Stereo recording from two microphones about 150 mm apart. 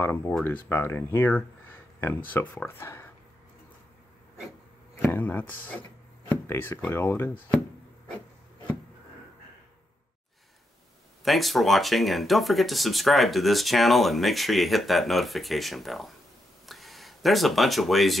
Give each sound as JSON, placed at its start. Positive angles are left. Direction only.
{"t": 0.0, "sound": "speech", "side_deg": 15}
{"t": 5.1, "sound": "speech", "side_deg": 10}
{"t": 11.2, "sound": "speech", "side_deg": 0}
{"t": 16.6, "sound": "a sound", "side_deg": 0}